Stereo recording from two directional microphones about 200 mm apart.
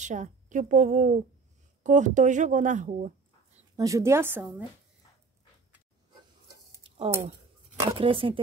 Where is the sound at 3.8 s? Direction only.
15° right (ahead or behind).